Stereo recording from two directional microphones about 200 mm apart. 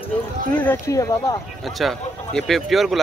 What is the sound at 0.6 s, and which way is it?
Speech, 15° left (ahead or behind).